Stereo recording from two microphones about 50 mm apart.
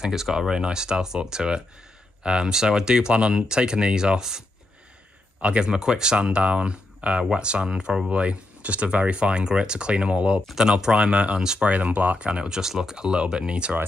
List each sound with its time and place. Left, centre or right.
0.0 s speech: centre
10.5 s speech: centre
11.7 s speech: right